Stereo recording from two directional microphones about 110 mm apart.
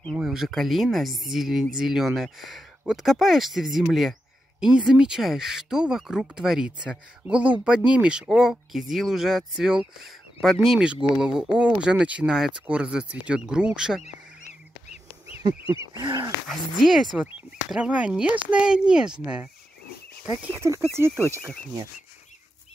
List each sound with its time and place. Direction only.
0.1 s speech: 5° right (ahead or behind)
14.0 s goose: 90° left
16.0 s speech: 40° right (ahead or behind)
16.4 s speech: centre (ahead or behind)
20.6 s speech: 25° right (ahead or behind)